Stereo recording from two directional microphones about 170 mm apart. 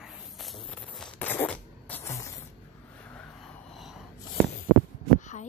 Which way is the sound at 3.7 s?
Centre (ahead or behind).